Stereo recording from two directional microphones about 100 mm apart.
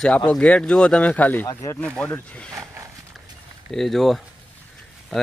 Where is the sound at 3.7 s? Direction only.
5° left (ahead or behind).